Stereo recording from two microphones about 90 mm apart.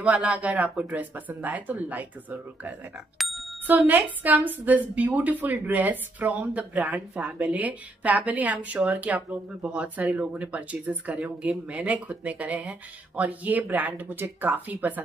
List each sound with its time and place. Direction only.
0.0 s speech: 15° right (ahead or behind)
3.2 s bicycle bell: centre (ahead or behind)
3.6 s speech: 20° right (ahead or behind)